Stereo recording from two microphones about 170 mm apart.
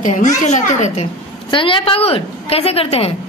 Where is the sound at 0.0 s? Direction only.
45° left (ahead or behind).